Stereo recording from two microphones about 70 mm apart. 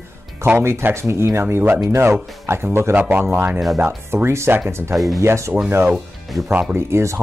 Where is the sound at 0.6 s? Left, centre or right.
Right.